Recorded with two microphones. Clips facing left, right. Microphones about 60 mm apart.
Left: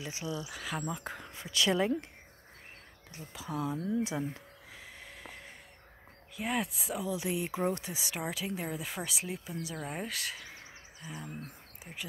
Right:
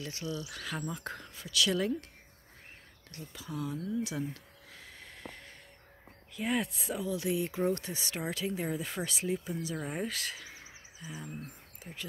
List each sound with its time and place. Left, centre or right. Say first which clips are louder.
0.0 s speech: even; centre
0.5 s speech: left 1 dB; centre
1.3 s speech: left 1 dB; left
3.1 s speech: left 2 dB; centre
3.7 s speech: left 2 dB; left
4.7 s a sound: left 1 dB; centre
6.3 s speech: right 1 dB; centre
7.1 s speech: right 2 dB; centre
7.8 s speech: even; centre
11.8 s speech: even; centre